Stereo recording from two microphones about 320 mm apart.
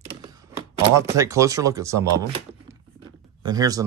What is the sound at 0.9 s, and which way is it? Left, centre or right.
Speech, centre.